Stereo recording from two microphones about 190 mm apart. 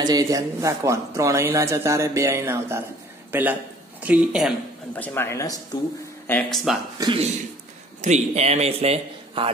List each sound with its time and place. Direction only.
0.0 s a man's voice: 20° right (ahead or behind); by 4.6 s 5° right (ahead or behind)
4.9 s speech: 10° left (ahead or behind)
7.0 s a man's voice: 25° right (ahead or behind)
8.0 s a man's voice: 35° right (ahead or behind)